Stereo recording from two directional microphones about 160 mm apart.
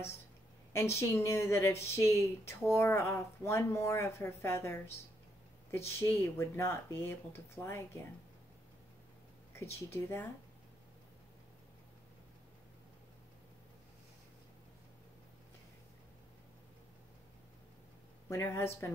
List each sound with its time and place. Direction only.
0.9 s speech: 15° left (ahead or behind)
9.8 s speech: 15° left (ahead or behind)
18.3 s speech: 15° left (ahead or behind)